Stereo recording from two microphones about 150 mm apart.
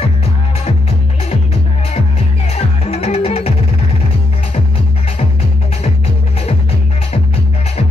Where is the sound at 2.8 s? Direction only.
45° left (ahead or behind).